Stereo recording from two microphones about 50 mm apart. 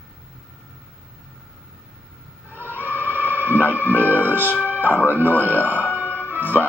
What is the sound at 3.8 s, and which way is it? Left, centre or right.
Speech, left.